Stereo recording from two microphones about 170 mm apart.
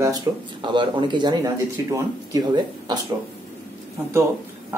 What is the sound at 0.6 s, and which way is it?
Speech, 30° right (ahead or behind).